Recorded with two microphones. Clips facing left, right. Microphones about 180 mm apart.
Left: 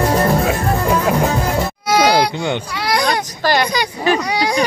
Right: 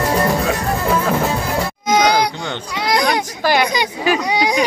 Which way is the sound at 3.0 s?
5° right (ahead or behind).